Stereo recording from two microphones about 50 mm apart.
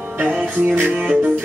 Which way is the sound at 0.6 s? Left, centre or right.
Right.